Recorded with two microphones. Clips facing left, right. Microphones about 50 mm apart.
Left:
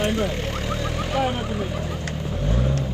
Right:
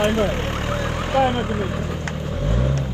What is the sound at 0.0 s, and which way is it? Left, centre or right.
Speech, right.